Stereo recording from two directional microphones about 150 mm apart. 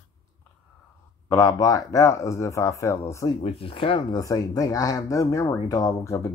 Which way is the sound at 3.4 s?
40° left (ahead or behind).